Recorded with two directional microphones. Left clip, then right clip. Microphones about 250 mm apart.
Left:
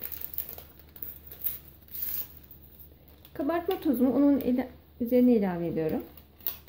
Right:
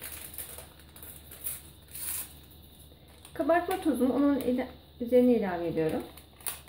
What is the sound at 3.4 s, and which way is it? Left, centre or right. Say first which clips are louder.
Speech: right 2 dB; left.